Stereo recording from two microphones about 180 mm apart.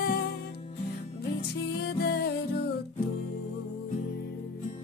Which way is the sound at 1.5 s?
65° left (ahead or behind).